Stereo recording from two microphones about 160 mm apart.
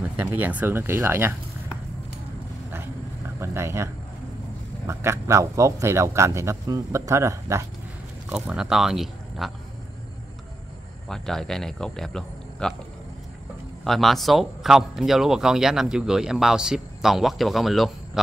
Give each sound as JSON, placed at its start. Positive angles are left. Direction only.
{"t": 0.2, "sound": "speech", "side_deg": -10}
{"t": 3.3, "sound": "a man's voice", "side_deg": -15}
{"t": 8.3, "sound": "speech", "side_deg": -5}
{"t": 11.1, "sound": "speech", "side_deg": 5}
{"t": 13.8, "sound": "speech", "side_deg": 0}